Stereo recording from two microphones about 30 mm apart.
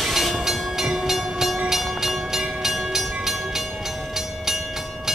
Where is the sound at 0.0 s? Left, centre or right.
Centre.